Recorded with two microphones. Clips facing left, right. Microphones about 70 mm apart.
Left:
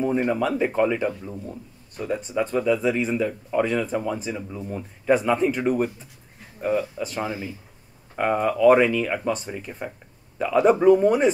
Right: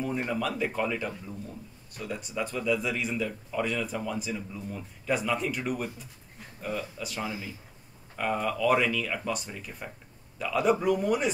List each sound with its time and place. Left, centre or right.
0.1 s speech: left
10.4 s speech: left